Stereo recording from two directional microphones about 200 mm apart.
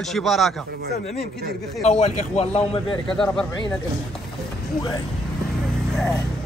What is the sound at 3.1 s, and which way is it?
Speech, 5° left (ahead or behind).